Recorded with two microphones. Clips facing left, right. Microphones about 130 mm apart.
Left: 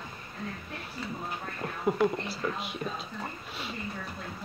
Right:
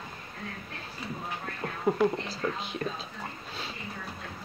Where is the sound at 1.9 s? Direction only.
25° right (ahead or behind).